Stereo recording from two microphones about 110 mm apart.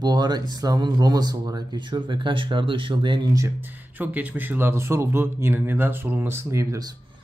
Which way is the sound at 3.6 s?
15° right (ahead or behind).